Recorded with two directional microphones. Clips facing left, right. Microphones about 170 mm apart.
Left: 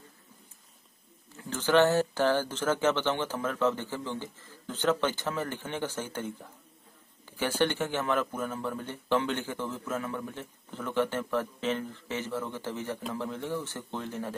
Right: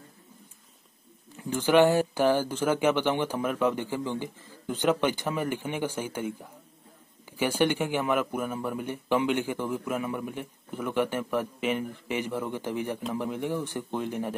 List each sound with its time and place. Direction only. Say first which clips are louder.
1.3 s a man's voice: right 3 dB; 15° right (ahead or behind)